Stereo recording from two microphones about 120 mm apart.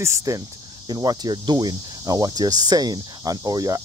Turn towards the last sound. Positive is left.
turn(degrees=-30)  # may be behind; listen again after turning